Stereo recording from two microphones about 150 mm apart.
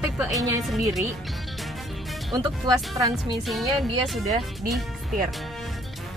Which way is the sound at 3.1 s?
Centre (ahead or behind).